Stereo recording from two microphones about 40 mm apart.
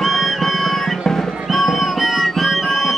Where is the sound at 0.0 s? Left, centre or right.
Centre.